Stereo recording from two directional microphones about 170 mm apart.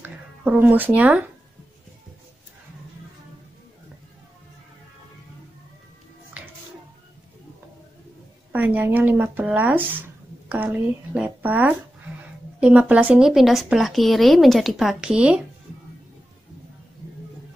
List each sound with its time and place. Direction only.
0.0 s speech: 10° right (ahead or behind)
8.5 s speech: 10° right (ahead or behind)